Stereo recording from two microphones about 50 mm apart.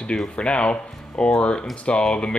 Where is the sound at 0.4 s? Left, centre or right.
Left.